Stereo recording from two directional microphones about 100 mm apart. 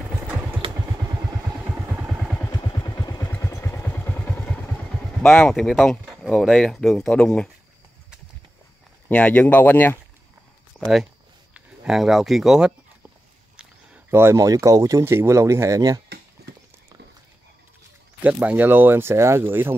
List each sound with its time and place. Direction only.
1.6 s vehicle: 5° right (ahead or behind)
2.7 s vehicle: 45° left (ahead or behind); by 4.7 s 20° left (ahead or behind)
5.2 s speech: 5° left (ahead or behind)
9.1 s speech: 15° left (ahead or behind)
10.8 s a sound: 5° right (ahead or behind)
11.5 s speech: 5° right (ahead or behind)
14.1 s speech: 25° right (ahead or behind)
18.2 s speech: 15° right (ahead or behind)